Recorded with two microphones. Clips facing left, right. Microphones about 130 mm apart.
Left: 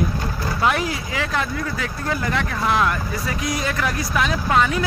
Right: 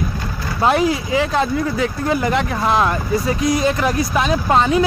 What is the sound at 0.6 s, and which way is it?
Speech, 25° right (ahead or behind).